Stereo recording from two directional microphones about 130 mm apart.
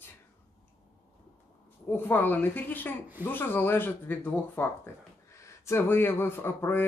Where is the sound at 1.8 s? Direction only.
15° left (ahead or behind).